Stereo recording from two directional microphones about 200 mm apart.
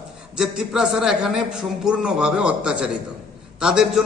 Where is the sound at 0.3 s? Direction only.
Centre (ahead or behind).